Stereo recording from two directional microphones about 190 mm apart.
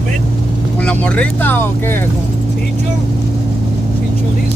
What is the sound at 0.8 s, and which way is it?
Speech, 5° left (ahead or behind).